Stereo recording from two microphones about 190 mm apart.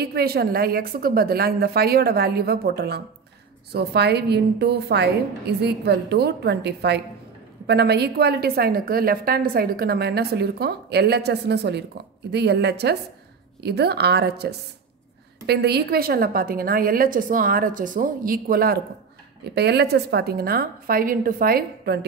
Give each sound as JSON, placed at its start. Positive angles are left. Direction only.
{"t": 0.0, "sound": "a woman's voice", "side_deg": -55}